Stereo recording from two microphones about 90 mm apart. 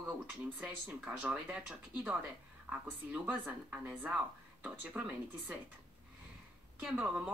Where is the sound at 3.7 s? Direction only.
15° right (ahead or behind).